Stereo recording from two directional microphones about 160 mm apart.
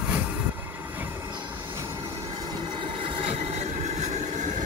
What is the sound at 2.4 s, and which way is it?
Train, 25° right (ahead or behind).